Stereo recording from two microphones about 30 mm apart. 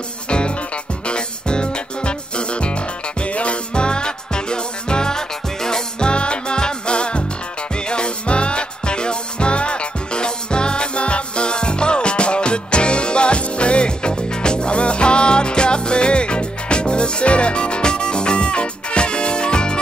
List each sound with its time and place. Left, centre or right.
1.0 s music: left
3.7 s music: left
5.9 s music: left